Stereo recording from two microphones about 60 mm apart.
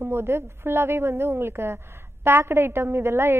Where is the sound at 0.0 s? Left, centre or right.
Right.